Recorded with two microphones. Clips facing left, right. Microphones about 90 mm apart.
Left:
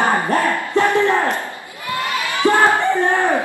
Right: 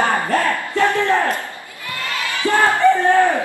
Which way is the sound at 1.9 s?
20° left (ahead or behind).